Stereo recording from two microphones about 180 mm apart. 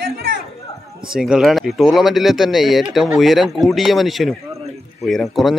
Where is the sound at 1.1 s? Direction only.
5° right (ahead or behind).